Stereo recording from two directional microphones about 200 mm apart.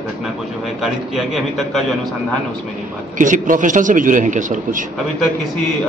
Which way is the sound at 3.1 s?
40° right (ahead or behind).